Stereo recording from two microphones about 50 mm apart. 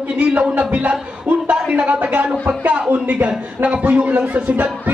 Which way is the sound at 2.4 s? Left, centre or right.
Right.